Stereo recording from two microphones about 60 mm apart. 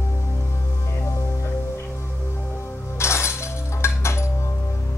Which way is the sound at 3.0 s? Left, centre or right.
Left.